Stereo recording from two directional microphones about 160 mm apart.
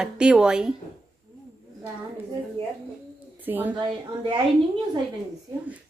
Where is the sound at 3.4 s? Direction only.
10° right (ahead or behind).